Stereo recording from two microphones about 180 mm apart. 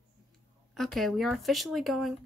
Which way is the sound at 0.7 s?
Centre (ahead or behind).